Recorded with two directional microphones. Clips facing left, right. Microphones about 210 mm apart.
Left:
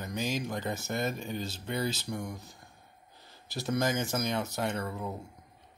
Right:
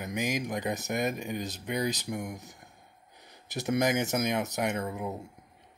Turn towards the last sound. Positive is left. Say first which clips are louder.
# right 2 dB
turn(degrees=-20)  # may be behind; listen again after turning